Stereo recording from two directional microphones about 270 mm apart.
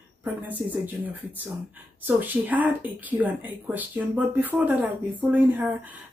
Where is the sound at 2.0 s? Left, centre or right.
Centre.